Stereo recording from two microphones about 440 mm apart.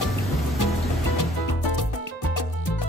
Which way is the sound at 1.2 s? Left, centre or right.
Left.